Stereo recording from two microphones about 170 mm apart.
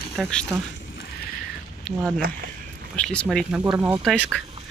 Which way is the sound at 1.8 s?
Centre (ahead or behind).